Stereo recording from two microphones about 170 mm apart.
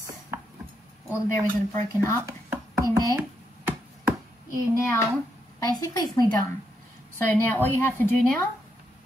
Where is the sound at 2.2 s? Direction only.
15° right (ahead or behind).